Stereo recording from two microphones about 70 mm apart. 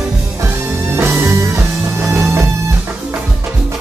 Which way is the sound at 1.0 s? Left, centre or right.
Right.